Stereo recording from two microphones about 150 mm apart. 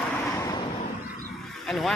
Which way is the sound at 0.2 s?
20° left (ahead or behind).